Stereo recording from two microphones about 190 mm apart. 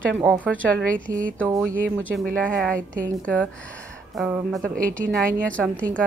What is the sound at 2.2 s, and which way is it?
Speech, 5° left (ahead or behind).